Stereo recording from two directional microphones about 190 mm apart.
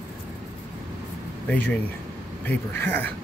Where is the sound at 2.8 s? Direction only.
10° left (ahead or behind).